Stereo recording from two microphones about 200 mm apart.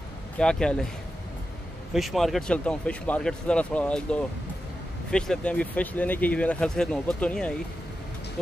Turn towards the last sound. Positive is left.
turn(degrees=5)  # may be behind; listen again after turning